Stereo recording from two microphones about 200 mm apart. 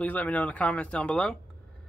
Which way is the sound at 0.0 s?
10° left (ahead or behind).